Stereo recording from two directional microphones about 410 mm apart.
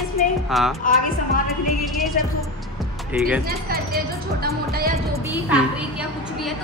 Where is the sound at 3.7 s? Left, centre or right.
Right.